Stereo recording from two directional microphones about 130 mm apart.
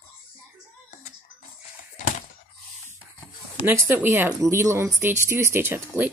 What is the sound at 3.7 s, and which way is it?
Speech, 20° right (ahead or behind).